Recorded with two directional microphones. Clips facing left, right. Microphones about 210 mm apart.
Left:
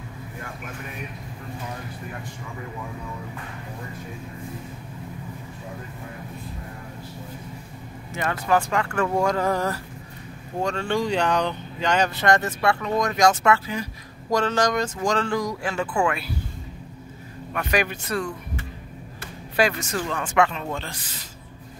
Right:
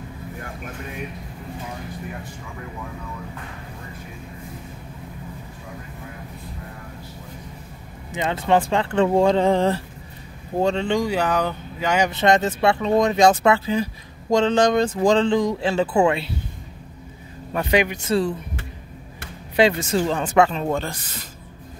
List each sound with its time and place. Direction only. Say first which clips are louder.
8.1 s speech: right 3 dB; 20° right (ahead or behind)
12.1 s speech: right 3 dB; 20° right (ahead or behind)
17.5 s speech: right 4 dB; 25° right (ahead or behind)
19.5 s speech: right 5 dB; 25° right (ahead or behind); by 21.3 s 55° right (ahead or behind)